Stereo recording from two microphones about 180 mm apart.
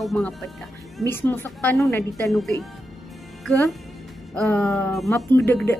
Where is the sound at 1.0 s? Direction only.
10° left (ahead or behind).